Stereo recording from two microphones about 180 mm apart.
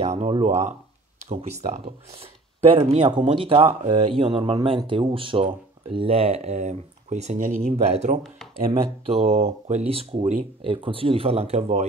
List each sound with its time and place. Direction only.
0.2 s speech: 35° right (ahead or behind)
1.9 s speech: 30° right (ahead or behind)